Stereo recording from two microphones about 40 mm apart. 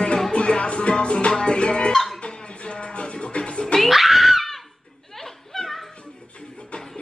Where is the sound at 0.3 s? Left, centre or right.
Left.